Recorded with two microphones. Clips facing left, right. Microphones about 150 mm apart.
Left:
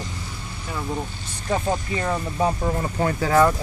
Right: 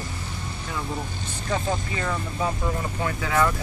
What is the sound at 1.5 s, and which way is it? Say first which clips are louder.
Speech: left 3 dB; 25° left (ahead or behind).